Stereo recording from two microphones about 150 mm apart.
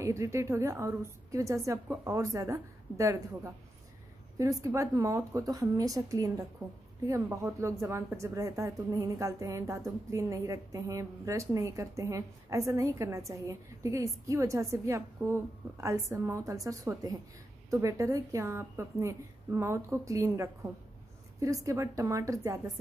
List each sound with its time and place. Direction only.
0.0 s speech: 20° right (ahead or behind)